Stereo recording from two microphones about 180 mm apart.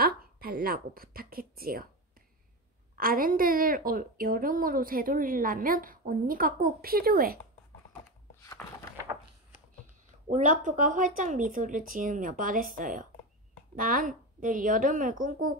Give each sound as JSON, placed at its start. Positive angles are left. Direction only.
{"t": 0.0, "sound": "a woman's voice", "side_deg": -55}
{"t": 3.0, "sound": "a woman's voice", "side_deg": -50}
{"t": 8.6, "sound": "a sound", "side_deg": 5}
{"t": 10.3, "sound": "a woman's voice", "side_deg": -45}